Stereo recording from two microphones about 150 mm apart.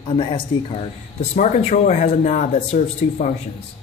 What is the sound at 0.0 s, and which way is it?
Speech, 35° left (ahead or behind).